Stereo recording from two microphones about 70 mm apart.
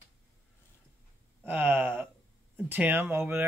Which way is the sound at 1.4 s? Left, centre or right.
Right.